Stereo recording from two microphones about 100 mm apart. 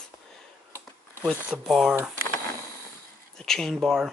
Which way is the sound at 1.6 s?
Centre (ahead or behind).